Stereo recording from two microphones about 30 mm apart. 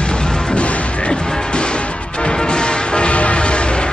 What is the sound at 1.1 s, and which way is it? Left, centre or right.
Music, left.